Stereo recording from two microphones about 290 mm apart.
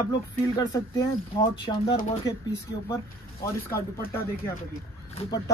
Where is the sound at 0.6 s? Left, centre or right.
Centre.